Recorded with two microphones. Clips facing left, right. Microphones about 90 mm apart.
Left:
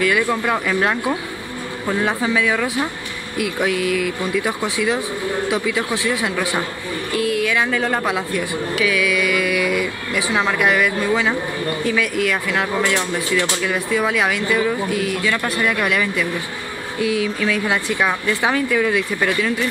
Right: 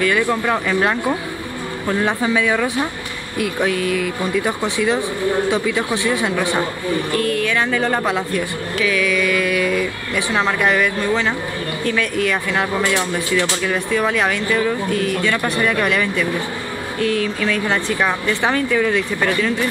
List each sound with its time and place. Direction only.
0.0 s speech: centre (ahead or behind)